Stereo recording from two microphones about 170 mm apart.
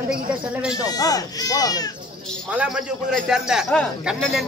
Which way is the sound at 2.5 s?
5° right (ahead or behind).